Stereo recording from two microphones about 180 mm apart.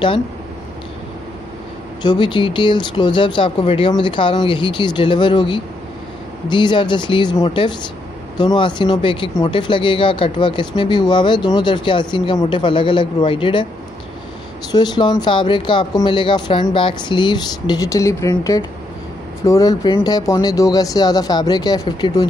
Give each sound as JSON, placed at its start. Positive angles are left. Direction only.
{"t": 2.0, "sound": "speech", "side_deg": 25}
{"t": 14.7, "sound": "speech", "side_deg": 25}